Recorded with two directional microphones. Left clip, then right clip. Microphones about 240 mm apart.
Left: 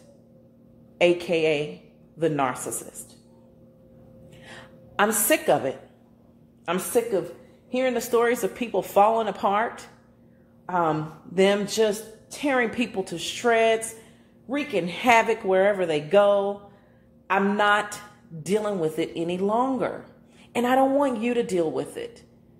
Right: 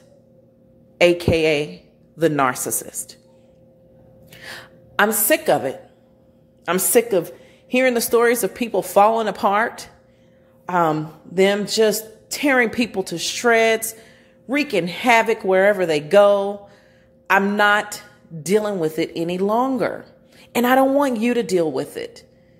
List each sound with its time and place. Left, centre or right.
0.9 s a woman's voice: right
4.3 s a sound: right
6.6 s a woman's voice: right
11.0 s a woman's voice: centre